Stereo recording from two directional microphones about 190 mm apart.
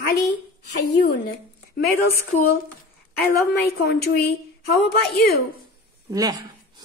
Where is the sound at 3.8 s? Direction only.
55° left (ahead or behind).